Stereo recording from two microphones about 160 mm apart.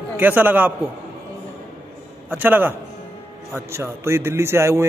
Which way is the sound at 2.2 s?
10° right (ahead or behind).